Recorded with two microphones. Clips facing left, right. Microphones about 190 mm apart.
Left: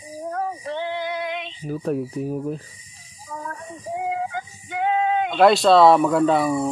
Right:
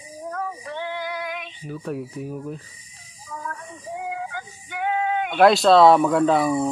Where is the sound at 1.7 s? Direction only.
35° left (ahead or behind).